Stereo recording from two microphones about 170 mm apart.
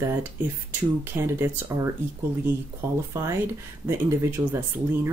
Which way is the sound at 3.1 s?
15° right (ahead or behind).